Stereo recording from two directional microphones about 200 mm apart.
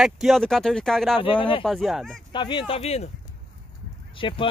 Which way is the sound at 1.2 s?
25° left (ahead or behind).